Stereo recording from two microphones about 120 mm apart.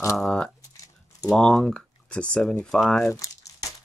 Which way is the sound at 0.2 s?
10° left (ahead or behind).